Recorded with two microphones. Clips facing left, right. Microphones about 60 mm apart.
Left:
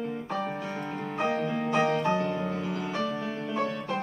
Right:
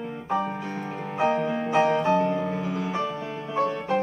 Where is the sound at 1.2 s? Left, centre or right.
Centre.